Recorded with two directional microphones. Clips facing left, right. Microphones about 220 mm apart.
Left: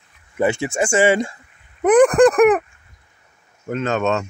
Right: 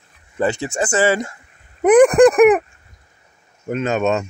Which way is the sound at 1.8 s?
10° right (ahead or behind).